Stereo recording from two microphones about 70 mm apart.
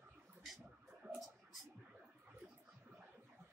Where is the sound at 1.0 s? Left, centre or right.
Right.